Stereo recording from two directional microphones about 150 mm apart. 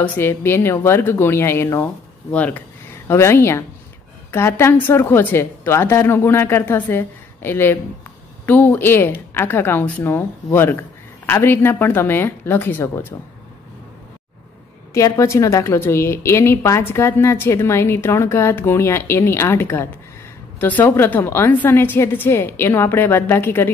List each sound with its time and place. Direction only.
0.0 s a woman's voice: 15° left (ahead or behind)
15.0 s a woman's voice: 20° left (ahead or behind)